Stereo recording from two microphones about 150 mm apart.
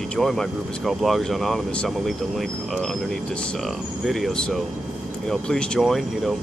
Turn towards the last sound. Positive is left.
turn(degrees=0)  # may be behind; listen again after turning